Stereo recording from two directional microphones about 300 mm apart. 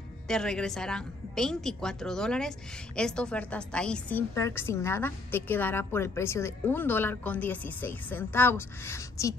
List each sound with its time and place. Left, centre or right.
0.3 s a woman's voice: centre